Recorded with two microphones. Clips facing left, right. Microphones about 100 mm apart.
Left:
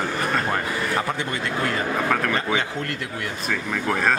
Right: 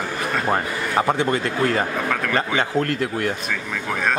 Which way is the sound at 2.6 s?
50° right (ahead or behind).